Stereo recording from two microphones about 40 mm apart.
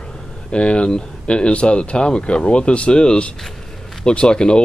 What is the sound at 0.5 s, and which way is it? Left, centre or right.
Speech, left.